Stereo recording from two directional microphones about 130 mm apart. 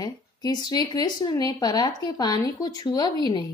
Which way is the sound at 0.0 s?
30° left (ahead or behind).